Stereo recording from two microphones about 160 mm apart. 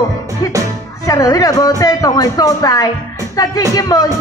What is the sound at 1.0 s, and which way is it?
A woman's voice, 20° left (ahead or behind).